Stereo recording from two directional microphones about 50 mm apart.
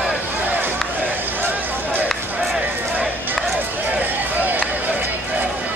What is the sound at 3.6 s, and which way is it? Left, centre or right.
Run, right.